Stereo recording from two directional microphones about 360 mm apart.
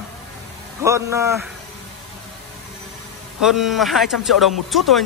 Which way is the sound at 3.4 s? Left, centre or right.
Centre.